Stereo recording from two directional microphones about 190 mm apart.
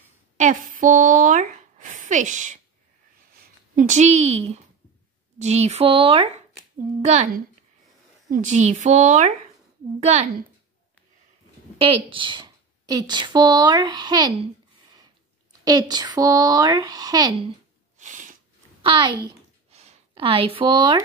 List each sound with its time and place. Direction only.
0.4 s speech: 45° right (ahead or behind)
11.8 s a woman's voice: 30° right (ahead or behind)
17.9 s a sound: 40° right (ahead or behind)
18.8 s a woman's voice: 25° right (ahead or behind)